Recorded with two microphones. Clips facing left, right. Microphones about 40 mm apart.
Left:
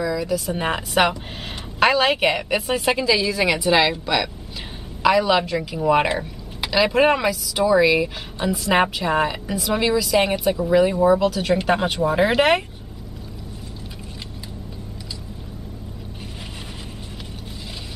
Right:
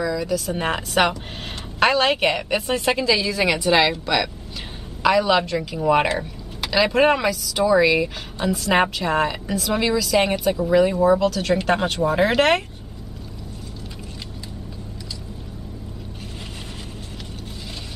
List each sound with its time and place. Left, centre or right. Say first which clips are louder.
0.0 s speech: even; centre